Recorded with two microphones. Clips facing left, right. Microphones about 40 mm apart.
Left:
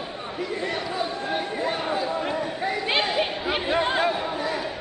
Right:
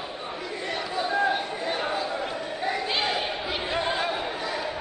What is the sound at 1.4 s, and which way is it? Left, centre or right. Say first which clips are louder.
Chatter: left 3 dB; left.